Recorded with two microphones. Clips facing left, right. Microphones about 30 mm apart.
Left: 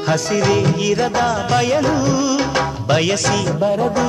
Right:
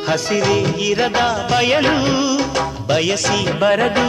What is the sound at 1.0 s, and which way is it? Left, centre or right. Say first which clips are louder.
Music: right 1 dB; right.